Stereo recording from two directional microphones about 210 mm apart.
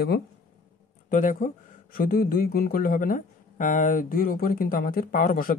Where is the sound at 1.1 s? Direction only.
40° left (ahead or behind).